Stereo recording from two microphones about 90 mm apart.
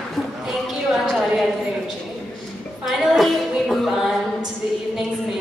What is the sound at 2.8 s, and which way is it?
Music, centre (ahead or behind).